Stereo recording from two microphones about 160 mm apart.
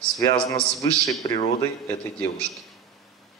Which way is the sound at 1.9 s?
10° left (ahead or behind).